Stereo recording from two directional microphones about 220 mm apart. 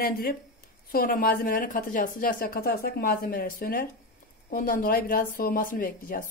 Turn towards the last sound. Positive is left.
turn(degrees=40)  # may be behind; listen again after turning